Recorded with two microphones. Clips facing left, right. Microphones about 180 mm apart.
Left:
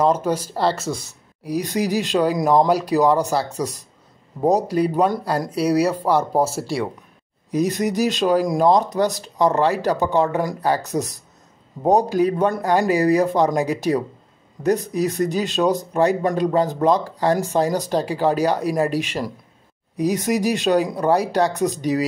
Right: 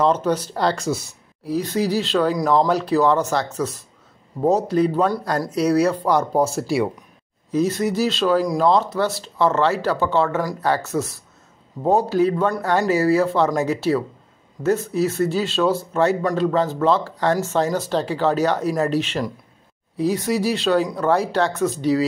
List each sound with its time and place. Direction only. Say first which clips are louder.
0.0 s speech: even; 10° left (ahead or behind)
1.4 s speech: right 1 dB; 15° left (ahead or behind); by 6.9 s 5° right (ahead or behind)
7.5 s speech: even; 15° left (ahead or behind)